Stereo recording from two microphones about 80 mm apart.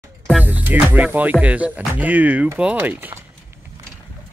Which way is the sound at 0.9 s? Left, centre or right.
Centre.